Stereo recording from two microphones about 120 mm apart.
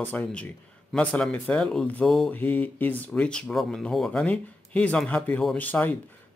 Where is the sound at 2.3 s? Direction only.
15° left (ahead or behind).